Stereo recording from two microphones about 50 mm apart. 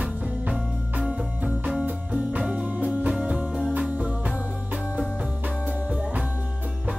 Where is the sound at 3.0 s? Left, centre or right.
Right.